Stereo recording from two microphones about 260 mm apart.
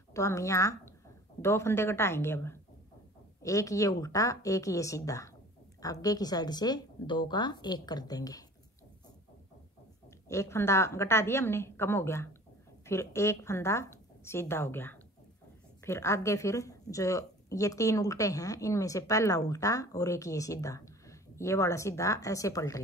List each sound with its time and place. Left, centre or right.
0.1 s a woman's voice: centre
10.2 s speech: centre